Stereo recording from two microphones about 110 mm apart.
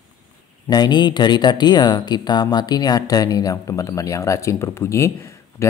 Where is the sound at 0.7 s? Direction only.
40° left (ahead or behind).